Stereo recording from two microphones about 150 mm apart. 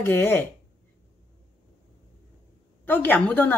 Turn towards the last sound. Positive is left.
turn(degrees=10)  # may be behind; listen again after turning